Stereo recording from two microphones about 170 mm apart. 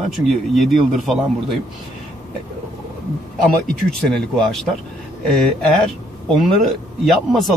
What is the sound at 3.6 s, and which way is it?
Speech, 5° left (ahead or behind).